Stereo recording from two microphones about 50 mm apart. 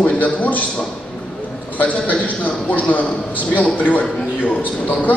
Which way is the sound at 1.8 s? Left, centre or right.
Left.